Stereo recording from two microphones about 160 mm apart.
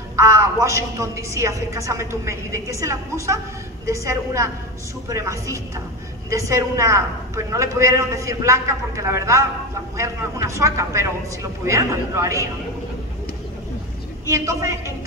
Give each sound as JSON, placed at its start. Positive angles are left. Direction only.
{"t": 0.1, "sound": "a woman's voice", "side_deg": -20}
{"t": 14.2, "sound": "a woman's voice", "side_deg": -20}